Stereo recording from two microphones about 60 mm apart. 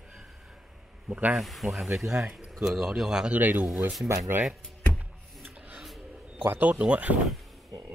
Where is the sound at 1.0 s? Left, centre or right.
Right.